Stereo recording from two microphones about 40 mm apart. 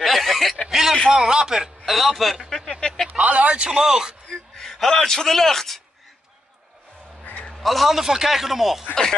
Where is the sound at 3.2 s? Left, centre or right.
Right.